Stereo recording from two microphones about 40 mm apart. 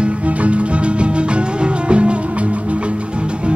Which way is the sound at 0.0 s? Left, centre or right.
Right.